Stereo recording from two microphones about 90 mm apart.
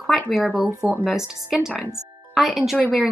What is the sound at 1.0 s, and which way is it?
A woman's voice, 5° right (ahead or behind).